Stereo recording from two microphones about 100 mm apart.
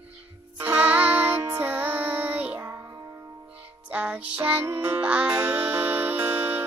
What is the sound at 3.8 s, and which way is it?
Music, 15° right (ahead or behind).